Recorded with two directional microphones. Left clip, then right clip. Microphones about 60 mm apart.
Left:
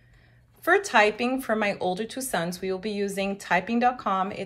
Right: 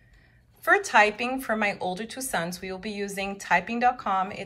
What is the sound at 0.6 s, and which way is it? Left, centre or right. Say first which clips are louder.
Speech: even; left.